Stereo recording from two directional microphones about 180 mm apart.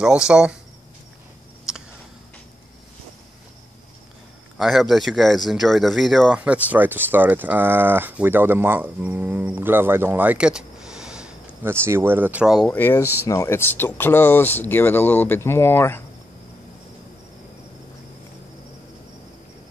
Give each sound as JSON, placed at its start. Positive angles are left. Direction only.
{"t": 0.0, "sound": "speech", "side_deg": -5}
{"t": 1.7, "sound": "a sound", "side_deg": 0}
{"t": 4.6, "sound": "speech", "side_deg": 0}